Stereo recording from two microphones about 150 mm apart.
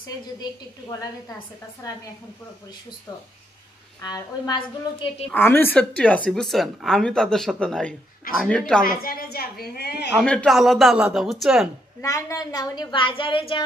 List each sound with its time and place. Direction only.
4.0 s a woman's voice: 25° left (ahead or behind)
5.3 s speech: 15° left (ahead or behind)
8.8 s a woman's voice: 75° left (ahead or behind)
10.1 s speech: 5° left (ahead or behind)
12.0 s a woman's voice: 20° left (ahead or behind)